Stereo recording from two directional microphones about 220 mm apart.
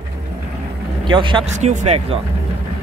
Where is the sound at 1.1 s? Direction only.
20° right (ahead or behind).